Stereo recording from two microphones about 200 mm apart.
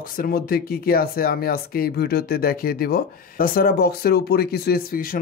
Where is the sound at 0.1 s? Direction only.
45° left (ahead or behind).